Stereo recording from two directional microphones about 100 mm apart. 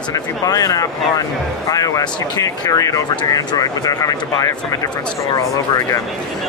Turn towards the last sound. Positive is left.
turn(degrees=35)  # may be behind; listen again after turning